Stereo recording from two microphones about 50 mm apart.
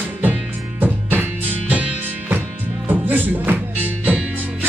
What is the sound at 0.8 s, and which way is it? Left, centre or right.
Music, right.